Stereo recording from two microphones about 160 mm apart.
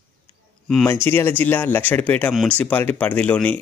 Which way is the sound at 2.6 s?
10° left (ahead or behind).